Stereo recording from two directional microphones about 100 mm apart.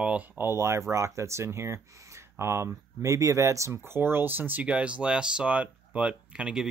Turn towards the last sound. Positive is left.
turn(degrees=-10)  # may be behind; listen again after turning